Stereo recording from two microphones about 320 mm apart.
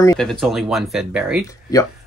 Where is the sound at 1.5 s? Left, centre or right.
Centre.